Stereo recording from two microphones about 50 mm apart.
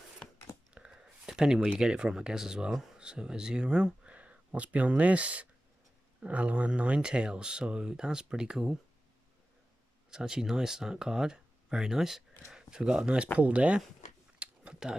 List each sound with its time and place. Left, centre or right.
1.0 s speech: centre
10.1 s speech: centre
14.4 s a sound: centre